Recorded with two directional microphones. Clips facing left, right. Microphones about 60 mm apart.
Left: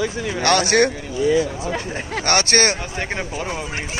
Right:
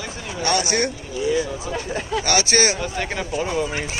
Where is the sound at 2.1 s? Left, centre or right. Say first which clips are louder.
Left 1 dB; left.